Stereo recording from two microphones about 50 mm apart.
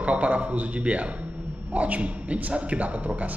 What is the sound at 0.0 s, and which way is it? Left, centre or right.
A man's voice, right.